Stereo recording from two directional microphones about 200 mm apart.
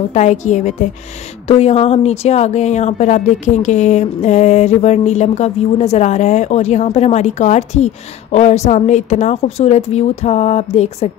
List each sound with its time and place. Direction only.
0.1 s speech: 35° left (ahead or behind)